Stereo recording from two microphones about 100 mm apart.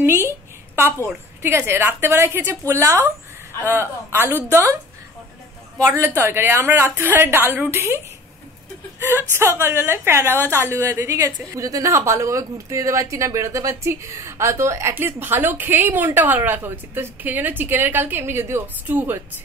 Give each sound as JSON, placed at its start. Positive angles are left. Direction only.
{"t": 0.0, "sound": "a woman's voice", "side_deg": -25}
{"t": 5.9, "sound": "a woman's voice", "side_deg": -20}
{"t": 9.4, "sound": "a woman's voice", "side_deg": -25}